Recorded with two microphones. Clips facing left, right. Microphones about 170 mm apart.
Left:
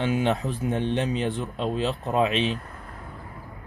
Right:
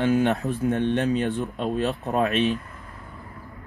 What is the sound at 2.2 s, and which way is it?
Speech, 20° left (ahead or behind).